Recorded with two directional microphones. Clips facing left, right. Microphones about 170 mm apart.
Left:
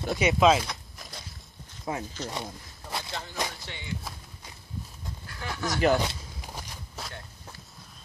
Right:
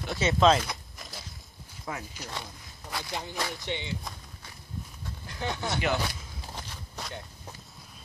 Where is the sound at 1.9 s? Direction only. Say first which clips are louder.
Left 4 dB; 25° left (ahead or behind).